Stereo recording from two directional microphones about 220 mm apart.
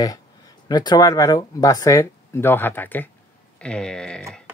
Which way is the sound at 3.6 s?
5° left (ahead or behind).